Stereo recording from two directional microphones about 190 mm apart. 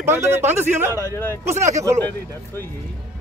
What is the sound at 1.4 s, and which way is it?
Speech, 15° right (ahead or behind).